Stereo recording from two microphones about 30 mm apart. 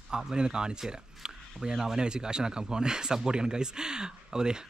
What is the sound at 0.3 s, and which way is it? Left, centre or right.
Speech, right.